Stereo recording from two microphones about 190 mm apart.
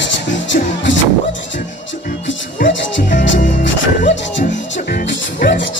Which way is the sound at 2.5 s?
45° left (ahead or behind).